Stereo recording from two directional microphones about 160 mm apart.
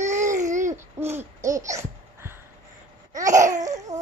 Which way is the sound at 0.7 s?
15° right (ahead or behind).